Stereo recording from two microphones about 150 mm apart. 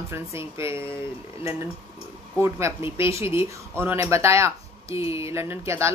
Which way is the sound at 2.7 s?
15° right (ahead or behind).